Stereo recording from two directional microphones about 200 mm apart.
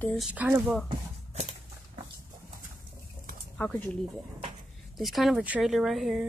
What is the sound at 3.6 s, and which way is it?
Speech, 5° left (ahead or behind).